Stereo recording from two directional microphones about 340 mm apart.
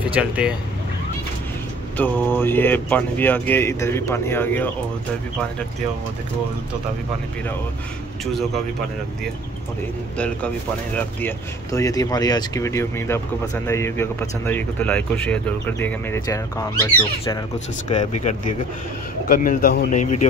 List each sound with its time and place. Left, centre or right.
0.1 s speech: centre
2.0 s speech: centre
10.1 s speech: centre
17.8 s speech: centre